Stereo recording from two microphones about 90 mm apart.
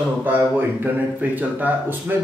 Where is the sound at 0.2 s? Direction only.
20° right (ahead or behind).